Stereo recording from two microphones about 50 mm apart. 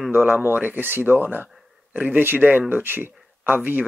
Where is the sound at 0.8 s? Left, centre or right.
Right.